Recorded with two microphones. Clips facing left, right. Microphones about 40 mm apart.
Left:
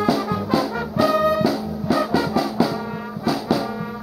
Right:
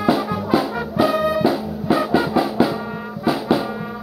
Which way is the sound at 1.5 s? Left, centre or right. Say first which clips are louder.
Right 3 dB; right.